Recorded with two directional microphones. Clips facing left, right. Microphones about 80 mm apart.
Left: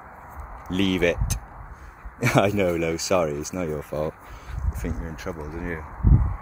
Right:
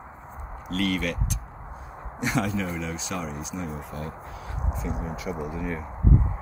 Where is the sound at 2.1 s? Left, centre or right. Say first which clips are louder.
Left 7 dB; left.